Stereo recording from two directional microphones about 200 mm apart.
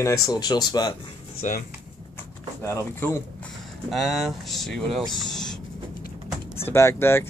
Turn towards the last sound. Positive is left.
turn(degrees=10)  # may be behind; listen again after turning